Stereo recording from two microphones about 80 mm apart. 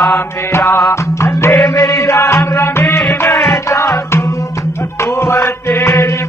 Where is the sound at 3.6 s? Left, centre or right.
Left.